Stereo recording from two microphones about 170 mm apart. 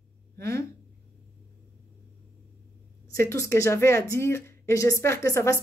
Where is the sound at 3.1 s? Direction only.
15° left (ahead or behind).